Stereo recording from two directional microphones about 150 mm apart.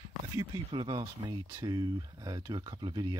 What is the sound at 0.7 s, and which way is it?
Speech, 30° right (ahead or behind).